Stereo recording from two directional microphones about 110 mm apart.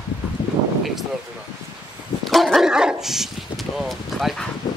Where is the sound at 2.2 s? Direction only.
Centre (ahead or behind).